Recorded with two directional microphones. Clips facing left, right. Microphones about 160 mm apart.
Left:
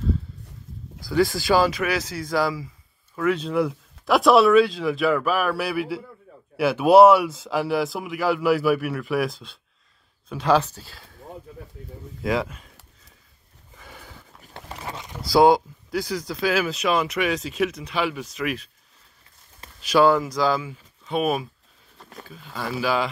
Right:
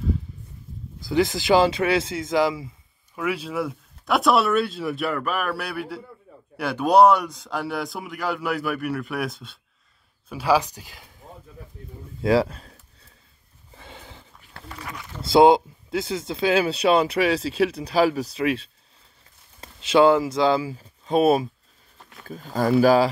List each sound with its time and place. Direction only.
1.0 s speech: 20° right (ahead or behind)
3.2 s a man's voice: 10° right (ahead or behind)
12.2 s speech: 35° right (ahead or behind)
13.7 s sniff: 25° right (ahead or behind)
14.5 s a sound: 30° left (ahead or behind)
15.2 s speech: 25° right (ahead or behind); by 23.0 s 45° right (ahead or behind)